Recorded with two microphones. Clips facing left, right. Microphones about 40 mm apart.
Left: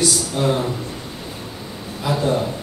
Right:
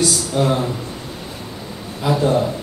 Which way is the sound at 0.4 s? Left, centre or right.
Centre.